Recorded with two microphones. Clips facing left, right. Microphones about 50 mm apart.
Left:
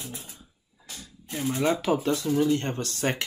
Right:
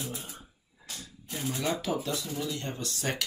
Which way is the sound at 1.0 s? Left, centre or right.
Centre.